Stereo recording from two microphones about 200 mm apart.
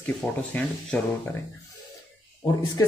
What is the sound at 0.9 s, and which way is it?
Speech, 5° left (ahead or behind).